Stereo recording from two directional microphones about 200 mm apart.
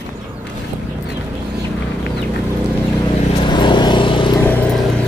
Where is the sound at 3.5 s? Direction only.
20° left (ahead or behind).